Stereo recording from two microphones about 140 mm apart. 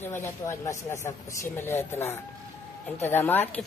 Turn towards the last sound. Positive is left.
turn(degrees=15)  # may be behind; listen again after turning